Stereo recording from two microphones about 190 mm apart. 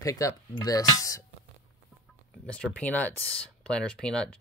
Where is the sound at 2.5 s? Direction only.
5° left (ahead or behind).